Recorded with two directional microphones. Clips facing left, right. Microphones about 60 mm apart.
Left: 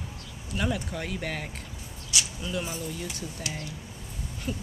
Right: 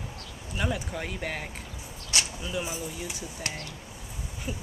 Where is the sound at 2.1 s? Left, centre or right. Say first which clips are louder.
Right 1 dB; right.